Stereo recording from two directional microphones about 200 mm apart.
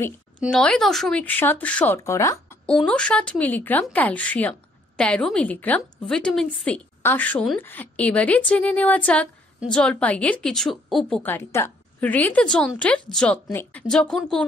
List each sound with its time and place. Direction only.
0.4 s speech: 5° left (ahead or behind)
2.6 s a woman's voice: 5° left (ahead or behind)